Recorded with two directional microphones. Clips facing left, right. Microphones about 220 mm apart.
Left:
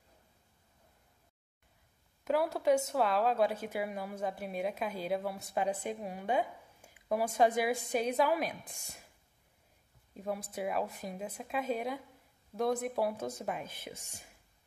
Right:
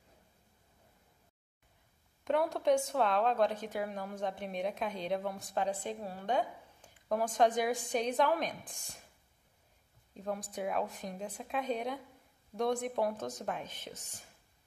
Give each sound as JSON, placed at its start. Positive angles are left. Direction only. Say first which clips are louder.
{"t": 2.2, "sound": "a woman's voice", "louder": "even", "side_deg": 5}
{"t": 10.1, "sound": "speech", "louder": "left 1 dB", "side_deg": 5}